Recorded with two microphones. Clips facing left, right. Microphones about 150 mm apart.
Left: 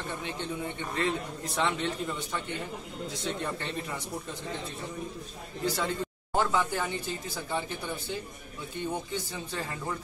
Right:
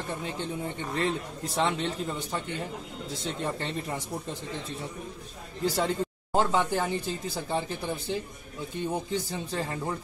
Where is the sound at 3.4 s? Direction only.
30° right (ahead or behind).